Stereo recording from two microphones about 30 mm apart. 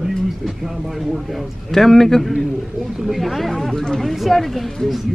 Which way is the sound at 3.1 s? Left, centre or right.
Centre.